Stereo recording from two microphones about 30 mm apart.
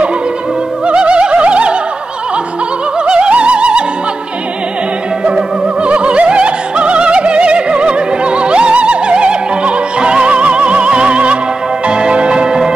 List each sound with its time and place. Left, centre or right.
0.8 s music: right
3.1 s music: right
5.2 s music: right